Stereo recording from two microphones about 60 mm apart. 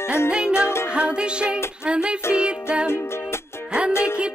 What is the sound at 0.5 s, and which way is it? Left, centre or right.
Music, left.